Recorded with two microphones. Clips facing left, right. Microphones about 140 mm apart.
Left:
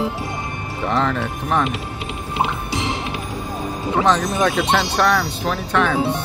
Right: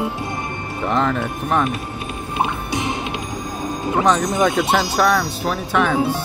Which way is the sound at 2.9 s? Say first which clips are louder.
Right 1 dB; 20° right (ahead or behind).